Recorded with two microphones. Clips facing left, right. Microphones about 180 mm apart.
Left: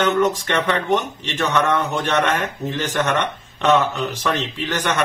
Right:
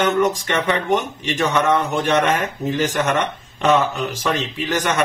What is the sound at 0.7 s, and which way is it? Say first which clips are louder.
Speech: right 2 dB; 10° right (ahead or behind).